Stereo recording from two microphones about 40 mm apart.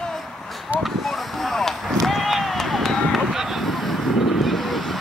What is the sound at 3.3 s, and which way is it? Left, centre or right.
Boat, centre.